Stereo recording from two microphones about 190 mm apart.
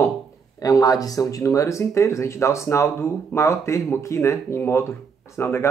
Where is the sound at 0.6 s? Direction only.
20° left (ahead or behind).